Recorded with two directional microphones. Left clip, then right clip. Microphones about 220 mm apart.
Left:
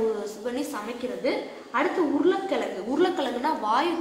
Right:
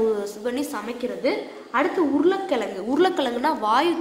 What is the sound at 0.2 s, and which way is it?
A woman's voice, 45° right (ahead or behind).